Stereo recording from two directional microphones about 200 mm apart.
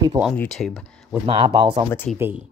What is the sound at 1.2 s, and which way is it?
Speech, 25° right (ahead or behind).